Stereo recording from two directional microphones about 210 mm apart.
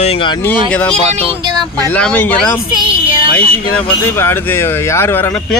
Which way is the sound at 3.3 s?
10° left (ahead or behind).